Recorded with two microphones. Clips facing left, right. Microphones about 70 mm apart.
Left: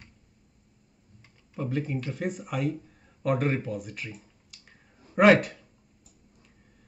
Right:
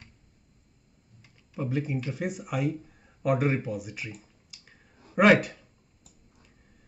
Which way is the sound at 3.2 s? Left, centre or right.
Centre.